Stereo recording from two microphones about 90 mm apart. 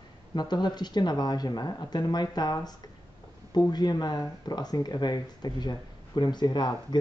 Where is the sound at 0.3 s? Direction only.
50° left (ahead or behind).